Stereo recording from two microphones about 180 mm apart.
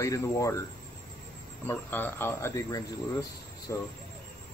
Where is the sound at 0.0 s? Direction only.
15° left (ahead or behind).